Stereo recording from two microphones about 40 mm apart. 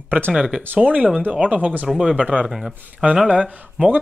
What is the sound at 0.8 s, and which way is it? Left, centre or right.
Speech, right.